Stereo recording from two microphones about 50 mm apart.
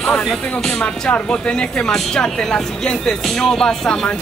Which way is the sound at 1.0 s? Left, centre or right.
Left.